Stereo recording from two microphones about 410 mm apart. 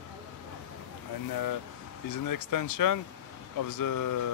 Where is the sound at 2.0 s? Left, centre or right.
Left.